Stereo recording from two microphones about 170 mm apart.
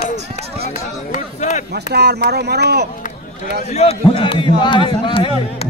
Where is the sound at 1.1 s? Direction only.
45° left (ahead or behind).